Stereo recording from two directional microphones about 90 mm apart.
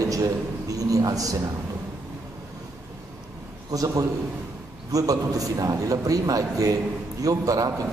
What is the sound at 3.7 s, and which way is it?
A man's voice, 40° right (ahead or behind).